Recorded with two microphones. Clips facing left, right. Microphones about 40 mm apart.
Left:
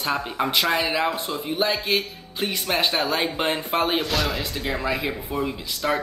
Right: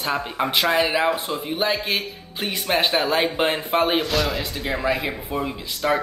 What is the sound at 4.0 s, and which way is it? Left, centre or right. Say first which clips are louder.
Speech: right 2 dB; centre.